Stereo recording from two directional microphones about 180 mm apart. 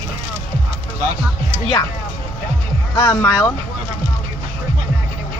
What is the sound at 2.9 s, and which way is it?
Speech, 15° left (ahead or behind).